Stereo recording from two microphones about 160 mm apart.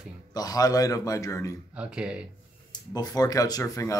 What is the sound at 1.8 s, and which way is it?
Speech, 5° right (ahead or behind).